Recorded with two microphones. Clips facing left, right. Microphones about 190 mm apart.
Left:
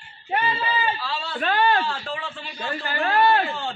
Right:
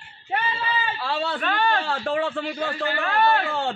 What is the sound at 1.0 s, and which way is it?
Speech, 60° right (ahead or behind).